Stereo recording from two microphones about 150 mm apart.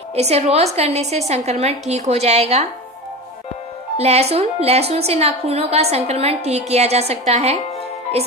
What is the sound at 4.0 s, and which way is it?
A woman's voice, 45° right (ahead or behind).